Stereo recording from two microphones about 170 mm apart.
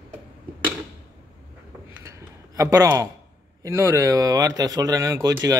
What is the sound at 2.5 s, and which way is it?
Speech, 20° right (ahead or behind).